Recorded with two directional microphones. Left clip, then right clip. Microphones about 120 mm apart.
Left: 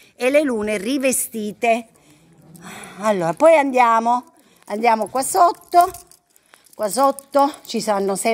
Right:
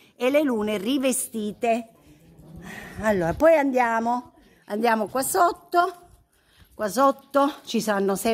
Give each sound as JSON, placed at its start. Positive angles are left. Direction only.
{"t": 0.2, "sound": "a woman's voice", "side_deg": 20}
{"t": 4.8, "sound": "speech", "side_deg": -10}
{"t": 5.1, "sound": "a woman's voice", "side_deg": 0}
{"t": 6.8, "sound": "a woman's voice", "side_deg": -10}